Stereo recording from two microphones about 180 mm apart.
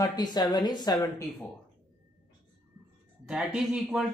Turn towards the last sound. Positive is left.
turn(degrees=-5)  # may be behind; listen again after turning